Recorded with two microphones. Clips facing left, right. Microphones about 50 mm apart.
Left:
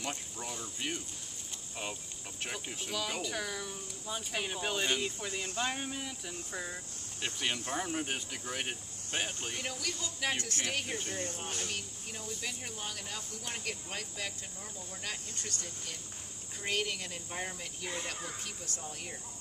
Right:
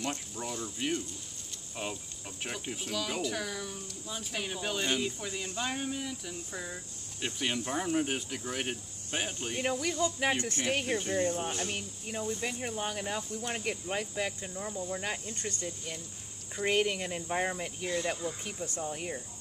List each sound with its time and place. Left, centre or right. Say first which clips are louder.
0.0 s speech: right 4 dB; centre
9.6 s speech: right 12 dB; right